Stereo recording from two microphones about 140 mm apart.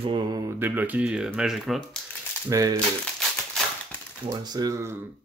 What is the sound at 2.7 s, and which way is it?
Crumpling, 5° left (ahead or behind).